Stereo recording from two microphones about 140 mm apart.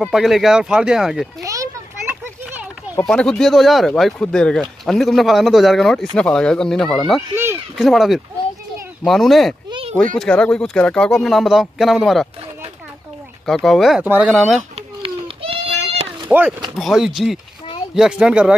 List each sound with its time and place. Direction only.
0.0 s speech: centre (ahead or behind)
1.4 s a sound: 25° right (ahead or behind)
3.1 s speech: 5° left (ahead or behind)
9.7 s a sound: 40° right (ahead or behind)
10.1 s speech: 5° left (ahead or behind)
13.5 s speech: centre (ahead or behind)
14.0 s speech: 10° right (ahead or behind)
14.3 s speech: centre (ahead or behind)
14.8 s children playing: 40° right (ahead or behind)
16.3 s speech: 10° right (ahead or behind)